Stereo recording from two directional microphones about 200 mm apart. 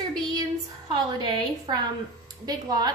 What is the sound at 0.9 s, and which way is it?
A woman's voice, 20° right (ahead or behind).